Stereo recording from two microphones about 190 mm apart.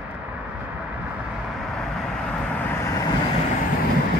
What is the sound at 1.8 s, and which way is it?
Vehicle, 5° left (ahead or behind).